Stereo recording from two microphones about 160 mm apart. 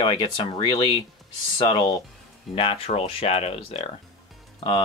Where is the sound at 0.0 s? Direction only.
35° left (ahead or behind).